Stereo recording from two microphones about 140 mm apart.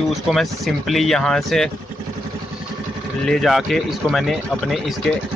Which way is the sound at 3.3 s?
Centre (ahead or behind).